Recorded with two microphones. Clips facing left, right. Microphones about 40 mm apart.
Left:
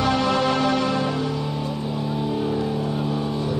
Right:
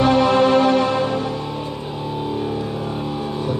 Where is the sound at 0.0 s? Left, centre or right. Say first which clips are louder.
Right 6 dB; right.